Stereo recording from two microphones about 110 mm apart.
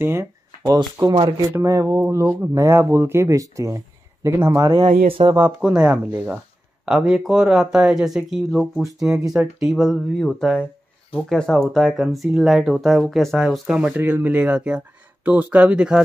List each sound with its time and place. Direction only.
0.0 s speech: 25° right (ahead or behind)
1.0 s speech: 35° right (ahead or behind)
4.7 s speech: 55° right (ahead or behind)
5.4 s speech: 10° right (ahead or behind)
13.7 s speech: 10° right (ahead or behind)